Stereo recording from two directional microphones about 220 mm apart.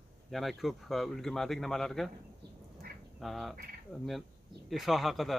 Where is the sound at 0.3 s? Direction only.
Centre (ahead or behind).